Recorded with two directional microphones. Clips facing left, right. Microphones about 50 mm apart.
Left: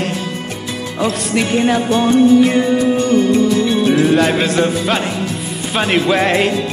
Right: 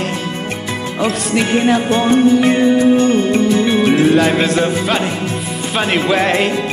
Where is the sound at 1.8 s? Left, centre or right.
Right.